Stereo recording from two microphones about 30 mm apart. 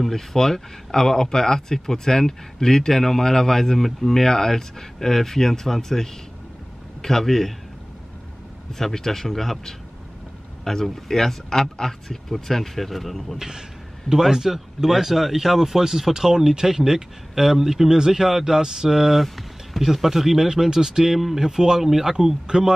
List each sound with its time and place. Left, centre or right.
0.1 s speech: centre
8.7 s speech: centre
13.4 s a sound: centre
14.3 s speech: centre
19.2 s music: centre
19.8 s speech: centre